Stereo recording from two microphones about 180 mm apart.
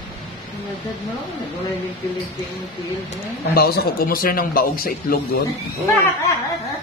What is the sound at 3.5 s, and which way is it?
A man's voice, 60° left (ahead or behind).